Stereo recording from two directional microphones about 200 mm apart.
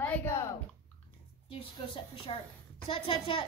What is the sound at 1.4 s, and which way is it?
A woman's voice, 25° left (ahead or behind).